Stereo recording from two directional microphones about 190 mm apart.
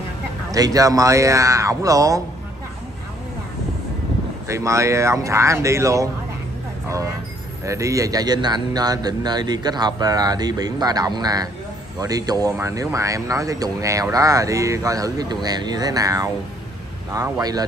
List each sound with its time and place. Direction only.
0.5 s speech: 20° right (ahead or behind)
4.5 s speech: 15° right (ahead or behind)
7.6 s a man's voice: 15° right (ahead or behind)